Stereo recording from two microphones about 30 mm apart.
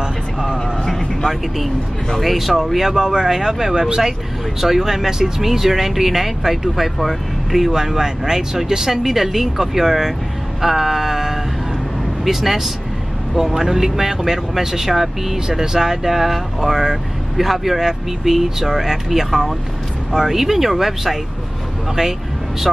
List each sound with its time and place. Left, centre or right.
0.0 s vehicle: centre
2.3 s speech: centre
2.9 s speech: right
15.3 s speech: centre